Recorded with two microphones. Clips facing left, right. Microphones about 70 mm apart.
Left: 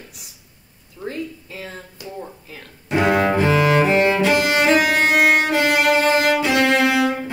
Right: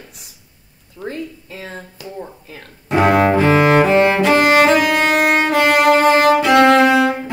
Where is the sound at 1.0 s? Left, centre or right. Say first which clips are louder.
Right 1 dB; right.